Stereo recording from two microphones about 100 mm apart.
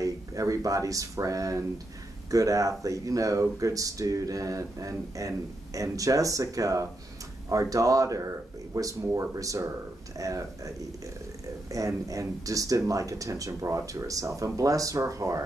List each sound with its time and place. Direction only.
0.0 s speech: 35° right (ahead or behind)
11.7 s speech: 35° right (ahead or behind)